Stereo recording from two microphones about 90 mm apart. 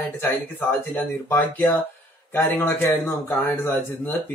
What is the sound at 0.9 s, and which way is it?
Speech, 20° left (ahead or behind).